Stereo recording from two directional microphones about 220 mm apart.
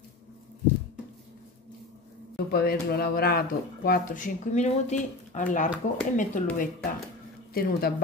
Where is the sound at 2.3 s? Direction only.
45° left (ahead or behind).